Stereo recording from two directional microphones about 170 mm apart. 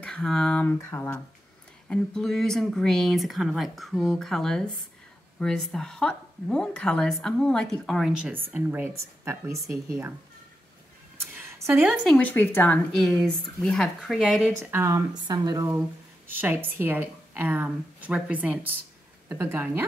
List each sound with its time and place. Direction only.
0.0 s speech: 5° left (ahead or behind)
1.9 s a woman's voice: centre (ahead or behind); by 10.1 s 15° right (ahead or behind)
11.3 s a woman's voice: 15° right (ahead or behind)
12.2 s speech: 10° left (ahead or behind)
14.6 s a woman's voice: 15° right (ahead or behind)